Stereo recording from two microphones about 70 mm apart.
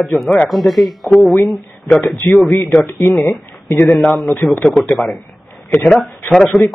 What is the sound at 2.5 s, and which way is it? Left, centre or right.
Speech, left.